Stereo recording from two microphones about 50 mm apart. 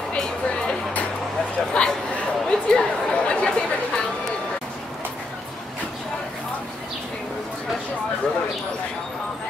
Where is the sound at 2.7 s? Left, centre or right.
Left.